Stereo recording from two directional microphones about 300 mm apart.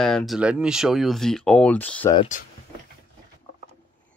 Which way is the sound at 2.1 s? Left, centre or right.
Centre.